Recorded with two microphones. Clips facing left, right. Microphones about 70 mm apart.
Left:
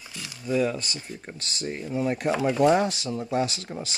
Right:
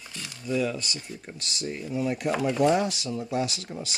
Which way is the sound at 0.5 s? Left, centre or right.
Left.